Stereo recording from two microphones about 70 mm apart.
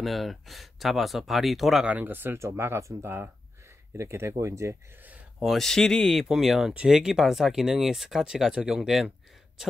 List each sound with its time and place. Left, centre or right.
0.0 s speech: centre
1.9 s speech: right
2.3 s speech: right
5.4 s speech: centre
6.7 s speech: centre
7.0 s speech: centre